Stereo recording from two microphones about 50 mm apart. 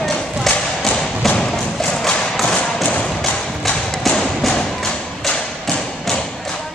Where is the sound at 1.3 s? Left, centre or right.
Centre.